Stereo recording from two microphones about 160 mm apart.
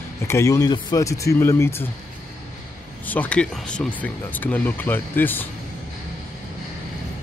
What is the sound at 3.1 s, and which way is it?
Speech, 10° left (ahead or behind).